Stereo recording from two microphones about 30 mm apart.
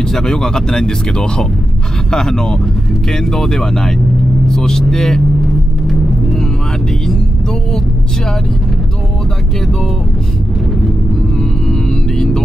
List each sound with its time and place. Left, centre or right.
0.0 s speech: centre
11.7 s music: centre